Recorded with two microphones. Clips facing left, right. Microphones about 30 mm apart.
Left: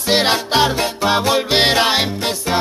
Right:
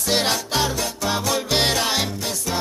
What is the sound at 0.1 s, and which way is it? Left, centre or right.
Music, left.